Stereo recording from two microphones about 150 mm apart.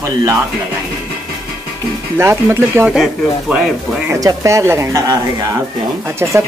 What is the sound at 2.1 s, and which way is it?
Speech, 15° right (ahead or behind).